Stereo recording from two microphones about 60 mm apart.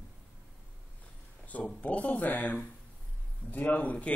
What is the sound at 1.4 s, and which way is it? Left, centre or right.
A man's voice, left.